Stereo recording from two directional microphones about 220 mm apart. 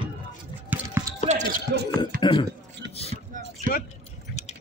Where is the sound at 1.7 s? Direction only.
50° right (ahead or behind).